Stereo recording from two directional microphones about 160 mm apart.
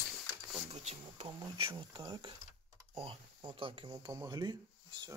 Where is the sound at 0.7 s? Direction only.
40° right (ahead or behind).